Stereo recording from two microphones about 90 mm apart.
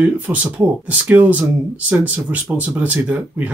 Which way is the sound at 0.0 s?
15° right (ahead or behind).